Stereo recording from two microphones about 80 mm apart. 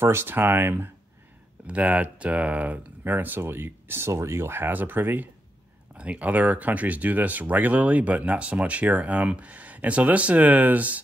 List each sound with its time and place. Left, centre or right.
0.0 s speech: right
1.7 s speech: centre